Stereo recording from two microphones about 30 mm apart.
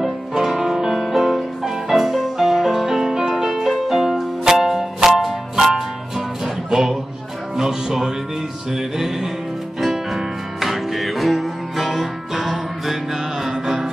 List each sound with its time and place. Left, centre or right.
0.0 s music: centre
0.9 s music: centre
2.8 s music: centre